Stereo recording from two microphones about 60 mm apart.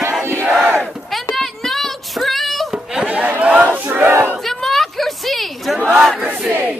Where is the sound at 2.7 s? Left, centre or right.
Centre.